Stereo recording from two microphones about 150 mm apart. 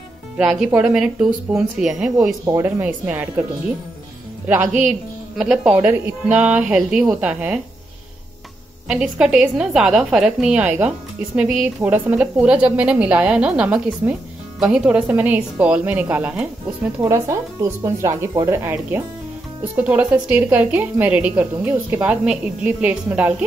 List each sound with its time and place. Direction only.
0.4 s a woman's voice: 5° right (ahead or behind)
2.4 s speech: 20° right (ahead or behind)
2.8 s a woman's voice: 10° right (ahead or behind)
5.7 s a woman's voice: 5° right (ahead or behind)
8.8 s a woman's voice: 5° right (ahead or behind)
17.0 s a woman's voice: 20° right (ahead or behind)